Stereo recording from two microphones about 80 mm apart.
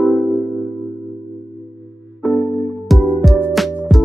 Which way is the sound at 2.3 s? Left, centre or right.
Centre.